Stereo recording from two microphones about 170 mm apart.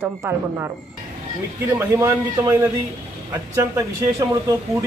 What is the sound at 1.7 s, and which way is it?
A woman's voice, 15° right (ahead or behind).